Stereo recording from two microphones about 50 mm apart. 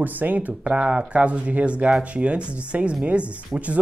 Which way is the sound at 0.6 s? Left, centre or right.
Right.